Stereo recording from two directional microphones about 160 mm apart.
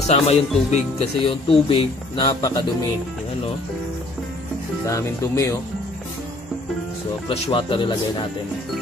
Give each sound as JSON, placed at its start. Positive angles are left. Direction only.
{"t": 0.0, "sound": "speech", "side_deg": 45}
{"t": 1.2, "sound": "speech", "side_deg": 30}
{"t": 4.8, "sound": "speech", "side_deg": 20}
{"t": 7.2, "sound": "speech", "side_deg": 35}